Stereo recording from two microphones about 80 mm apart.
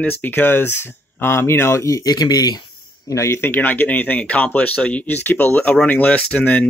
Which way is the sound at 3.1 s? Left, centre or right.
Left.